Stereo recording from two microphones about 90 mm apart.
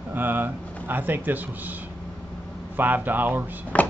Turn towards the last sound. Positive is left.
turn(degrees=15)  # may be behind; listen again after turning